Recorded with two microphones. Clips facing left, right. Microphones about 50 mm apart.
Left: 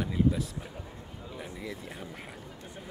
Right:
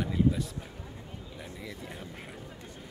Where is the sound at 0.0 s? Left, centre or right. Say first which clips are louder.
Even; centre.